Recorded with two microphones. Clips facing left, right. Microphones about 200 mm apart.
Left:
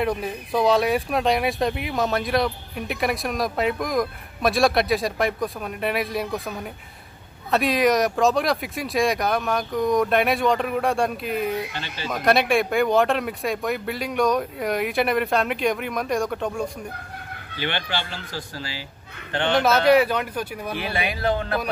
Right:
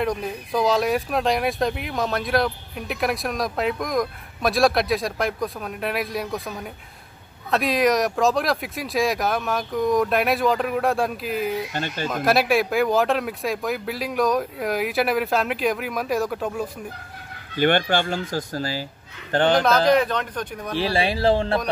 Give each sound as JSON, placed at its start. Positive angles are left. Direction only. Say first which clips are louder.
{"t": 0.0, "sound": "speech", "louder": "even", "side_deg": 5}
{"t": 11.7, "sound": "speech", "louder": "right 5 dB", "side_deg": -50}
{"t": 12.1, "sound": "speech", "louder": "left 1 dB", "side_deg": 0}
{"t": 17.6, "sound": "a man's voice", "louder": "right 9 dB", "side_deg": -50}
{"t": 19.9, "sound": "speech", "louder": "left 2 dB", "side_deg": 10}
{"t": 20.7, "sound": "a man's voice", "louder": "right 6 dB", "side_deg": -30}